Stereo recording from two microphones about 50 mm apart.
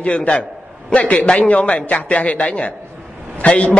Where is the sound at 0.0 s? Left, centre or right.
Left.